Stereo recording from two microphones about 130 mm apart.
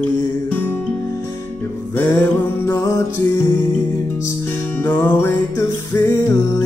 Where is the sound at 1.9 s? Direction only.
20° left (ahead or behind).